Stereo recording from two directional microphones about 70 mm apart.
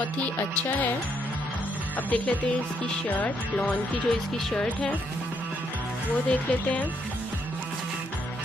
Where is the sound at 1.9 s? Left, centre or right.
Left.